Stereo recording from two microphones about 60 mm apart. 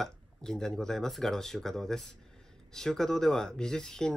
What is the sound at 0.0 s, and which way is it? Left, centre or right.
Speech, centre.